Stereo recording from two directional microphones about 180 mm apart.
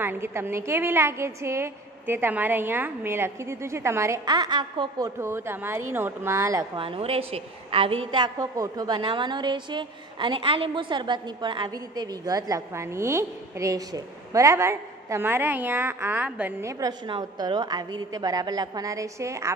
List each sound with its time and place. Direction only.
0.0 s a woman's voice: 15° right (ahead or behind)
6.8 s a woman's voice: 30° right (ahead or behind); by 19.5 s 15° right (ahead or behind)